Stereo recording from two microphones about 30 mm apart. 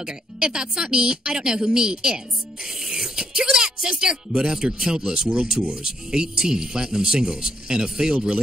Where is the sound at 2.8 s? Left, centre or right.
Centre.